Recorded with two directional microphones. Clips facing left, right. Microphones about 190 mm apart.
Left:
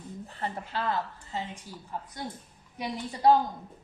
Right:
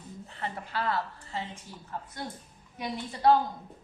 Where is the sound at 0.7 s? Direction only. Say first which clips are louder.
Right 1 dB; 20° left (ahead or behind).